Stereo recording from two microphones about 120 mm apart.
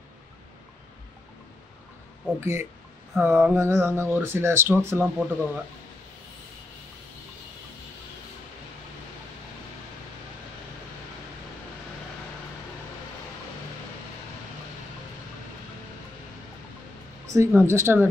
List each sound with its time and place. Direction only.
2.4 s speech: 20° right (ahead or behind)
17.3 s speech: 20° right (ahead or behind)